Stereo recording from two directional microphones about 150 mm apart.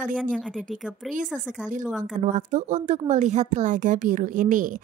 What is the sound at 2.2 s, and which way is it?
A woman's voice, 55° right (ahead or behind).